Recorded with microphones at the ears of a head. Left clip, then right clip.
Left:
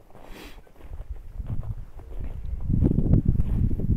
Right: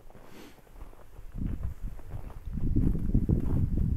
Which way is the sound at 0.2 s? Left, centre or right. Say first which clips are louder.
Left 7 dB; left.